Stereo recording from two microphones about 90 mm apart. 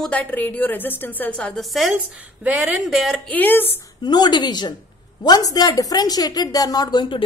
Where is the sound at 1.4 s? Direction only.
5° left (ahead or behind).